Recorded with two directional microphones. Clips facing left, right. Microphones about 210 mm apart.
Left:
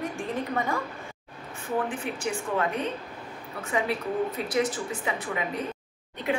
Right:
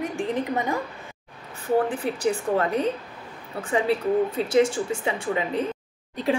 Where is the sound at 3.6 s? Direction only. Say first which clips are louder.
Right 5 dB; 30° right (ahead or behind).